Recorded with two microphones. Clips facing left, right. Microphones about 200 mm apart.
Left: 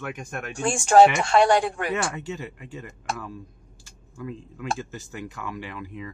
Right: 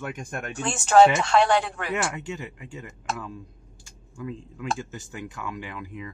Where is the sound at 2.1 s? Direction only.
15° right (ahead or behind).